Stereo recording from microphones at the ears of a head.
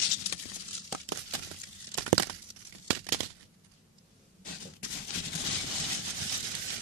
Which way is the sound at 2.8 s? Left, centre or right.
Right.